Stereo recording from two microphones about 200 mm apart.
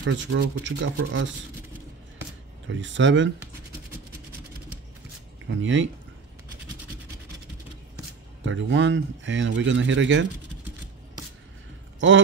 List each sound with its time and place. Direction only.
0.0 s speech: 60° right (ahead or behind)
2.7 s speech: 65° right (ahead or behind)
5.5 s speech: 70° right (ahead or behind)
8.5 s speech: 65° right (ahead or behind)